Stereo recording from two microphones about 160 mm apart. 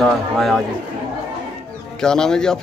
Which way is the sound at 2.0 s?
5° left (ahead or behind).